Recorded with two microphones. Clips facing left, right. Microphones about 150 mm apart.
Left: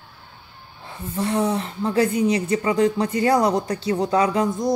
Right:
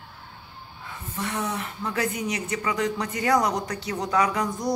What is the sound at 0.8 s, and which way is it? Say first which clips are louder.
Speech: left 7 dB; 30° left (ahead or behind).